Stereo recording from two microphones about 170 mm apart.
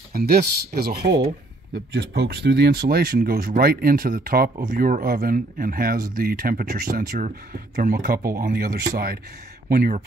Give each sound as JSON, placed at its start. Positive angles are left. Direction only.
{"t": 0.1, "sound": "speech", "side_deg": -65}
{"t": 1.7, "sound": "speech", "side_deg": -85}